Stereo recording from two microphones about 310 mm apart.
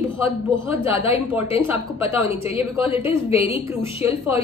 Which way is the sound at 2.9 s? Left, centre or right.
Centre.